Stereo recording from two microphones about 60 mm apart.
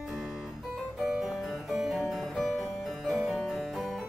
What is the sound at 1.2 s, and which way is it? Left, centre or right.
Music, centre.